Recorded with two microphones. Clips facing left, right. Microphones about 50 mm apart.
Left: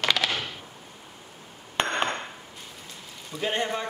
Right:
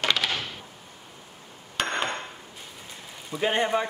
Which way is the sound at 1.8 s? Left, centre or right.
Left.